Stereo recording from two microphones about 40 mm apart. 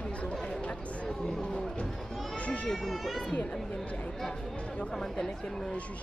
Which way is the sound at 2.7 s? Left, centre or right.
Centre.